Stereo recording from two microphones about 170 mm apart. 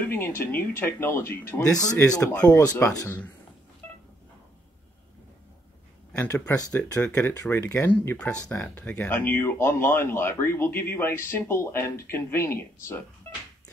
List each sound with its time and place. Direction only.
0.0 s speech: 15° left (ahead or behind)
2.9 s speech: 10° left (ahead or behind)
3.8 s a sound: 15° left (ahead or behind)
6.1 s speech: 15° left (ahead or behind)